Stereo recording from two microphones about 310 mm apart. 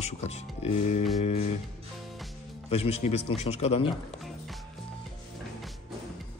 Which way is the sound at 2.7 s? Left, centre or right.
Centre.